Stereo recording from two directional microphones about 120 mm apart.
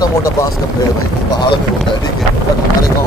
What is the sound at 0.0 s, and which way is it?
Speech, 30° left (ahead or behind).